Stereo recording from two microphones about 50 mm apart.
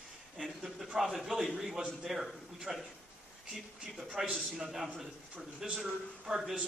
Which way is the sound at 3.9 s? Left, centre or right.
Centre.